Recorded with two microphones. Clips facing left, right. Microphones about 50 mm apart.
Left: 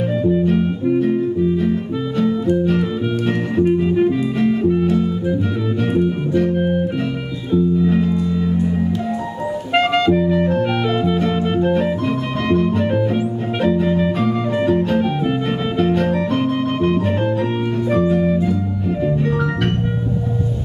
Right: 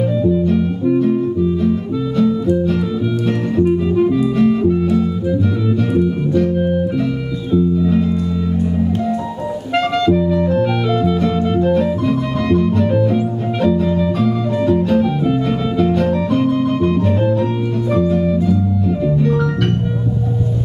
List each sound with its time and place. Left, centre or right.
0.2 s music: left
3.8 s music: centre
5.9 s music: centre
9.8 s music: left